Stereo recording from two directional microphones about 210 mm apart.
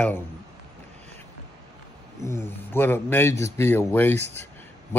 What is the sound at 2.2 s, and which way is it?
A man's voice, 10° left (ahead or behind).